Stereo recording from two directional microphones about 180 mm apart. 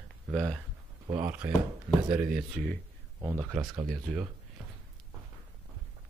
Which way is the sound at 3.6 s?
20° right (ahead or behind).